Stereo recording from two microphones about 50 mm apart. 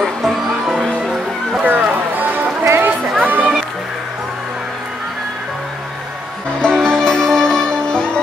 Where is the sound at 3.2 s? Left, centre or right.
Right.